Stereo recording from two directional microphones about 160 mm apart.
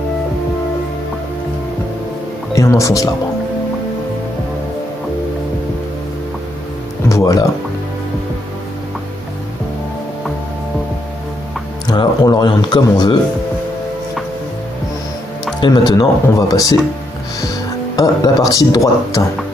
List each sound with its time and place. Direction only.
2.5 s speech: 20° left (ahead or behind)
7.1 s music: 20° left (ahead or behind)
11.9 s speech: 25° left (ahead or behind)
15.9 s speech: 25° left (ahead or behind)